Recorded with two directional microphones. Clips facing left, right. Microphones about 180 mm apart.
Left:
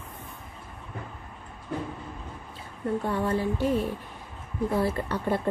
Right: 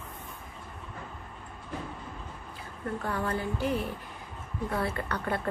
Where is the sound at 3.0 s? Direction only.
25° left (ahead or behind).